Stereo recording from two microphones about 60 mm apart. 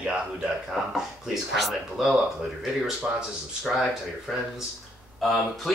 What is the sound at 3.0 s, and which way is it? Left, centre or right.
Speech, centre.